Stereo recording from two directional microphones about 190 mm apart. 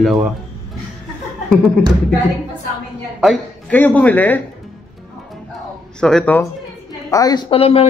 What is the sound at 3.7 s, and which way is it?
Speech, 10° left (ahead or behind).